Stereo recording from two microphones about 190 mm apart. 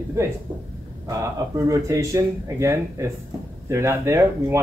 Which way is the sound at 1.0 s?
15° right (ahead or behind).